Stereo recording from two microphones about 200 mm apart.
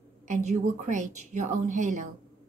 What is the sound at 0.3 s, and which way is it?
A woman's voice, 35° right (ahead or behind).